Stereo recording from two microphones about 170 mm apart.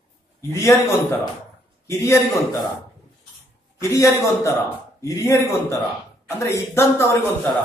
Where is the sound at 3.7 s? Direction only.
15° left (ahead or behind).